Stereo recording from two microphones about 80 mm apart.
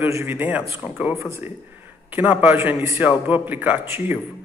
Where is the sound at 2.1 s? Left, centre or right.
Right.